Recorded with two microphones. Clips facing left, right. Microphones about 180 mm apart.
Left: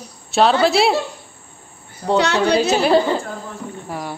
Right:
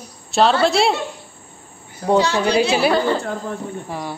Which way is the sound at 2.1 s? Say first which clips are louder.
Left 1 dB; 65° left (ahead or behind).